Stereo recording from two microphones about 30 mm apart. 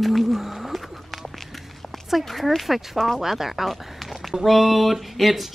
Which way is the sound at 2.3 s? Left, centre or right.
Centre.